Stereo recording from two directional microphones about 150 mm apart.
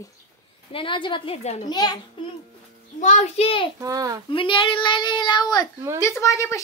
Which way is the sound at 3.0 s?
50° left (ahead or behind).